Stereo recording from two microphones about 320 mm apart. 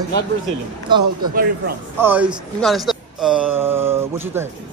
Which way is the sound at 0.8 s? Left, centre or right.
Centre.